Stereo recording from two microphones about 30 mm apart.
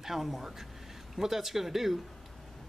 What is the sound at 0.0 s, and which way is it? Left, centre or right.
Speech, centre.